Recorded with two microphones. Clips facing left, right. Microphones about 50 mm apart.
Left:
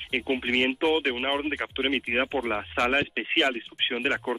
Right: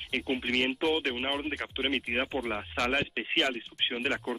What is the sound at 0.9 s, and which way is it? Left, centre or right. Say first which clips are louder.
Speech: left 4 dB; centre.